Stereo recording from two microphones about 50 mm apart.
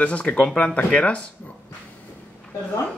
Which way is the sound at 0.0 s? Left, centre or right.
Left.